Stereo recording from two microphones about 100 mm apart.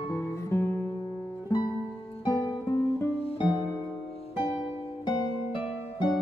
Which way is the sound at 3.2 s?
75° left (ahead or behind).